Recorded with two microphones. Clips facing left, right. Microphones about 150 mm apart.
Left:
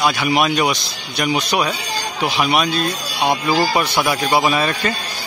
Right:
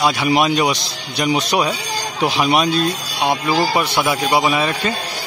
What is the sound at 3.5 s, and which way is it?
Speech, 20° right (ahead or behind).